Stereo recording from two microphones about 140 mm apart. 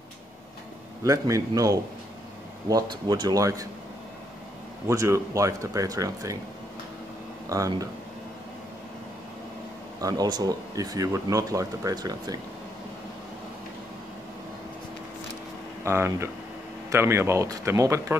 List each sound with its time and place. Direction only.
1.0 s speech: 25° right (ahead or behind)
4.8 s speech: 20° right (ahead or behind)
7.4 s speech: 25° right (ahead or behind)
9.9 s speech: 25° right (ahead or behind)
15.8 s speech: 20° right (ahead or behind)